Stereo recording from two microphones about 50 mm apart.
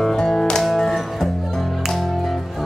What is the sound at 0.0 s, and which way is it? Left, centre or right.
Music, centre.